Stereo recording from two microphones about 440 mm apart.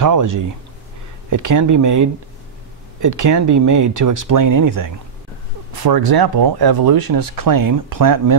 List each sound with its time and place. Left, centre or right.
0.0 s speech: right